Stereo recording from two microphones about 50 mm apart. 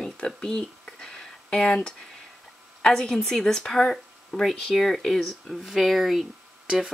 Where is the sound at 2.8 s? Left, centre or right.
Centre.